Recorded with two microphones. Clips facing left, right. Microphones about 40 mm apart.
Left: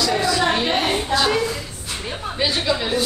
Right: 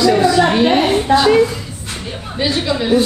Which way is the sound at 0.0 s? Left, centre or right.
Right.